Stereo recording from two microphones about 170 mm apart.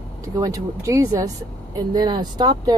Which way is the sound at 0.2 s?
20° right (ahead or behind).